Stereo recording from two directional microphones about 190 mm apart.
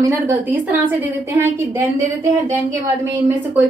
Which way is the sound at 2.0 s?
10° right (ahead or behind).